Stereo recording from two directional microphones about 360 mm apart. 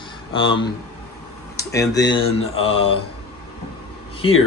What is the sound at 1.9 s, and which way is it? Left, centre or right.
Mantra, centre.